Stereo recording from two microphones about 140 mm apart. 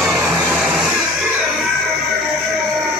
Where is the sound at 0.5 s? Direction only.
Centre (ahead or behind).